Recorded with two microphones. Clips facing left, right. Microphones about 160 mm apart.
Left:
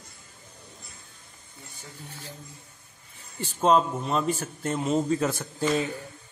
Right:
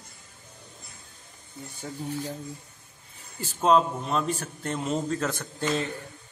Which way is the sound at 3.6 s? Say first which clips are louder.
Even; centre (ahead or behind).